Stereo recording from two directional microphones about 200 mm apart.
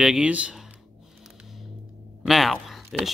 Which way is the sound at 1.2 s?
Centre (ahead or behind).